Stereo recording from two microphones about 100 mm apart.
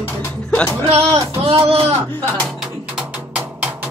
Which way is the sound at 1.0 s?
75° right (ahead or behind).